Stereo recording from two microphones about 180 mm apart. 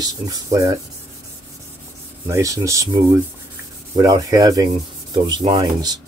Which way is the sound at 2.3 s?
20° right (ahead or behind).